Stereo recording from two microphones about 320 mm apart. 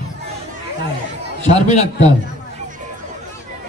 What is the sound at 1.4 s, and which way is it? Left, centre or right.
Speech, left.